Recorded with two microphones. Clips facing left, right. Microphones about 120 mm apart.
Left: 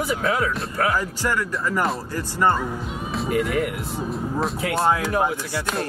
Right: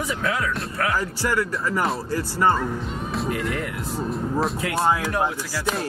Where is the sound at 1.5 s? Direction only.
Centre (ahead or behind).